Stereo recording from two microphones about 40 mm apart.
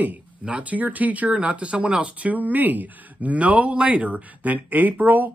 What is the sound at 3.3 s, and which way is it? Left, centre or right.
Speech, right.